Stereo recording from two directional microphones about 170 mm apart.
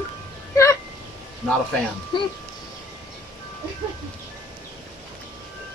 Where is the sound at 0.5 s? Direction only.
15° left (ahead or behind).